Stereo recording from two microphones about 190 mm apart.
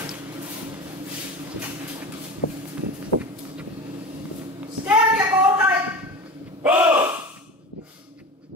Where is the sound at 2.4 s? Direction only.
50° left (ahead or behind).